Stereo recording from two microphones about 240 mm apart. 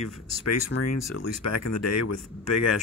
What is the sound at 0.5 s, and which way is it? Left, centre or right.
Speech, left.